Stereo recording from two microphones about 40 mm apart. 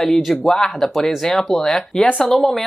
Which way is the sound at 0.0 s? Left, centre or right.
Centre.